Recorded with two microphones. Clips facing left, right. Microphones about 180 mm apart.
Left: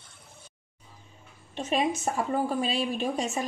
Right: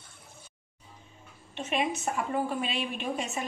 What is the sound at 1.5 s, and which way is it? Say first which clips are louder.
A woman's voice: left 3 dB; 35° left (ahead or behind).